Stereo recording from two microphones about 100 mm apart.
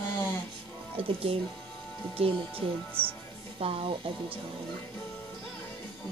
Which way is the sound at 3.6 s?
70° right (ahead or behind).